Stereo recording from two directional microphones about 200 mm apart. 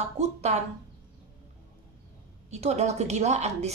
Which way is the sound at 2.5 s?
35° right (ahead or behind).